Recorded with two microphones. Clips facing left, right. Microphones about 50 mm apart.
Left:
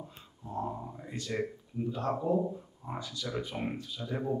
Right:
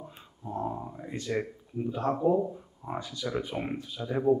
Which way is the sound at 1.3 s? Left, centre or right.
Centre.